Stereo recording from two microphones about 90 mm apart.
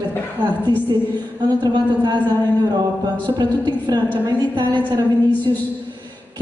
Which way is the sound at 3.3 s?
55° right (ahead or behind).